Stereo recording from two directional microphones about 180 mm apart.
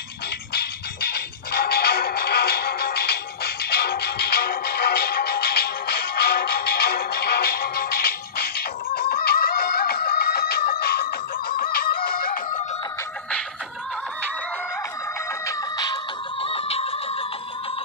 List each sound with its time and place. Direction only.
0.5 s music: 65° left (ahead or behind)
11.5 s snicker: 55° left (ahead or behind)
15.4 s music: 20° left (ahead or behind)
16.4 s a sound: 35° left (ahead or behind)